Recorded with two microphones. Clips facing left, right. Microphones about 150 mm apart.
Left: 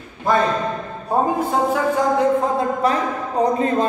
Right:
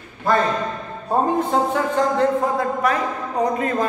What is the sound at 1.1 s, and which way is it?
A man's voice, 5° left (ahead or behind).